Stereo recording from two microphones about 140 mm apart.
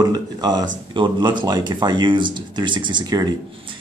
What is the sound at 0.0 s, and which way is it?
Speech, 30° right (ahead or behind).